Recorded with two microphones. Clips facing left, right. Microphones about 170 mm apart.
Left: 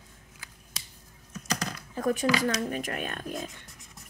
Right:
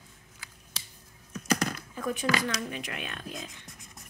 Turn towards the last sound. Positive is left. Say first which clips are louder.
# left 5 dB
turn(degrees=50)  # may be behind; listen again after turning